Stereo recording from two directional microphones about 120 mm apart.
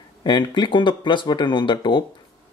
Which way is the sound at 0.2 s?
40° left (ahead or behind).